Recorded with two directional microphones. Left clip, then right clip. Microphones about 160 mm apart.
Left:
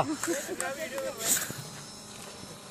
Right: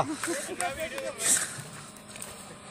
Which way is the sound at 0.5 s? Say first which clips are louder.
Right 2 dB; 35° left (ahead or behind).